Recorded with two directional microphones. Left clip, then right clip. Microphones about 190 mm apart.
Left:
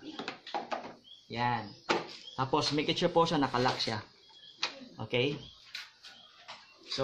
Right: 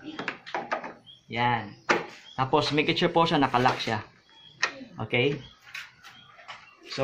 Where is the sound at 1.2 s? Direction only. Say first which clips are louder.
Right 6 dB; 10° right (ahead or behind).